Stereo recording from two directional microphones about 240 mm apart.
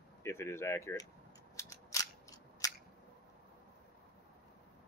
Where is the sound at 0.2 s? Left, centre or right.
Centre.